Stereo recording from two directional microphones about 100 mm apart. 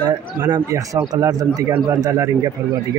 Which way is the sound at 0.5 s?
35° right (ahead or behind).